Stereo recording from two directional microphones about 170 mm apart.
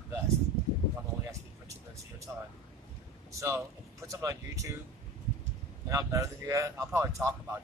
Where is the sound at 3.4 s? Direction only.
15° right (ahead or behind).